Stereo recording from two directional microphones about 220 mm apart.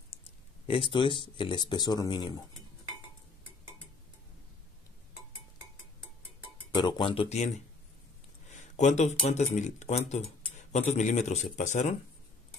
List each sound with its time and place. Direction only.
0.7 s speech: 25° left (ahead or behind)
6.7 s a man's voice: 20° left (ahead or behind)